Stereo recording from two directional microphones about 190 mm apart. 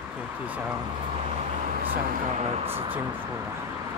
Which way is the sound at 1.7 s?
50° right (ahead or behind).